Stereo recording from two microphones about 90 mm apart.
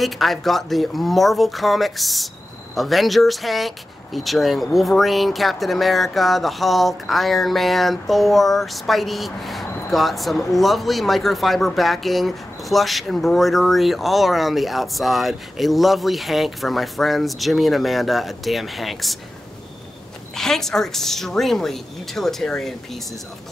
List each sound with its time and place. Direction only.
0.0 s speech: centre (ahead or behind)
20.3 s speech: 5° left (ahead or behind)